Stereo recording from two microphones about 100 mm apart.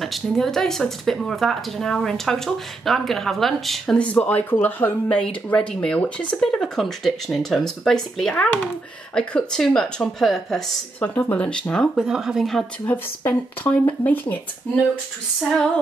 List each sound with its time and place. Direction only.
0.0 s speech: 5° left (ahead or behind)
11.0 s speech: 15° left (ahead or behind)
12.0 s speech: 5° right (ahead or behind)
12.8 s speech: 15° left (ahead or behind)